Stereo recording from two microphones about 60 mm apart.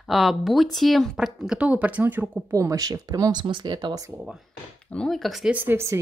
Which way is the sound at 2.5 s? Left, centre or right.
Right.